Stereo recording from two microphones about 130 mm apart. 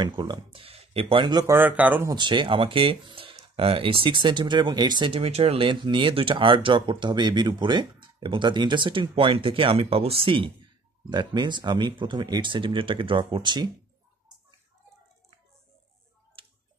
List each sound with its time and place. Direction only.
0.0 s speech: 35° right (ahead or behind)
1.5 s speech: 15° right (ahead or behind)
2.0 s speech: 35° right (ahead or behind)
16.4 s music: 45° right (ahead or behind)